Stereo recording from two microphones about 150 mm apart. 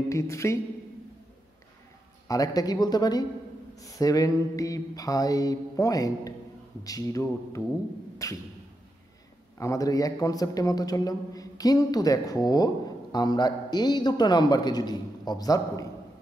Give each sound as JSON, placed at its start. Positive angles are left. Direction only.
{"t": 0.1, "sound": "a man's voice", "side_deg": 20}
{"t": 2.2, "sound": "a man's voice", "side_deg": 25}
{"t": 8.2, "sound": "music", "side_deg": 20}
{"t": 9.6, "sound": "a man's voice", "side_deg": 20}